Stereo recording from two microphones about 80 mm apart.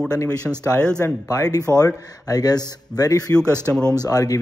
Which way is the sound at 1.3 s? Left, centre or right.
Left.